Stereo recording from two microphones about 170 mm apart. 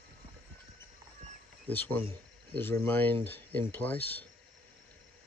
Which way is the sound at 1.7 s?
10° left (ahead or behind).